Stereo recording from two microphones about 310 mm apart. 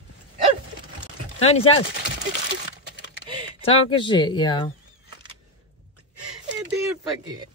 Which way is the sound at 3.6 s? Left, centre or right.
Centre.